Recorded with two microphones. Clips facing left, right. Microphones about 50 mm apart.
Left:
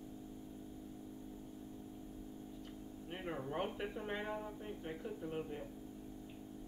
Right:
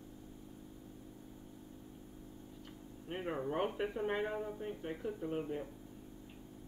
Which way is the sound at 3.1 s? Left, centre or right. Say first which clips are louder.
Right 5 dB; centre.